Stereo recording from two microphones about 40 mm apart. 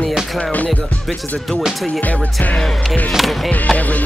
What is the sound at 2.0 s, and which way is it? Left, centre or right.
Speech, left.